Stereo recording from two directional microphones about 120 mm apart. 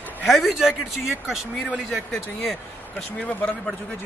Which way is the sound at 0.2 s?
10° left (ahead or behind).